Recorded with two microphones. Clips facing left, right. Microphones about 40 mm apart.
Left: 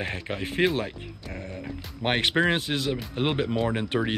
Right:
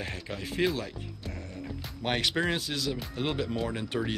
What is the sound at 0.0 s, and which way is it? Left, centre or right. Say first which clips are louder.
Speech: left 6 dB; left.